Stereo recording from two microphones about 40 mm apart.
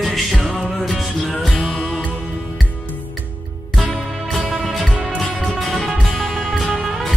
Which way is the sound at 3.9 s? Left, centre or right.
Left.